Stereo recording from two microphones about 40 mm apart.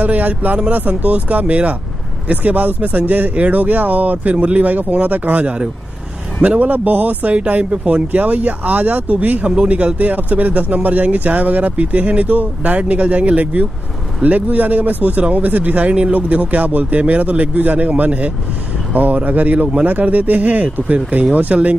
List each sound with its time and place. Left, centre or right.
0.0 s speech: right
3.3 s speech: right